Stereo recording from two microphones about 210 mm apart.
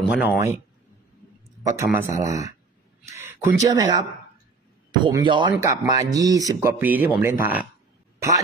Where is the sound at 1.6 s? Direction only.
15° right (ahead or behind).